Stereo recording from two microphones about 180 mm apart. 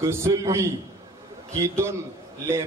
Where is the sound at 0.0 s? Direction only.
15° right (ahead or behind).